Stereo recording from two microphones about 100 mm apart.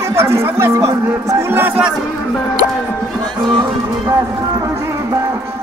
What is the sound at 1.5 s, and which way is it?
Speech, 20° right (ahead or behind).